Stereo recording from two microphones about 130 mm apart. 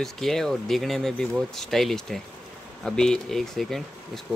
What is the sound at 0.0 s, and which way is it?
Speech, centre (ahead or behind).